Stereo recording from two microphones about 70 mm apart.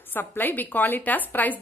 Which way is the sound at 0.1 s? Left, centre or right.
Left.